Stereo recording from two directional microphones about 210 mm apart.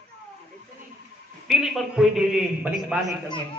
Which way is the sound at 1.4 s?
Centre (ahead or behind).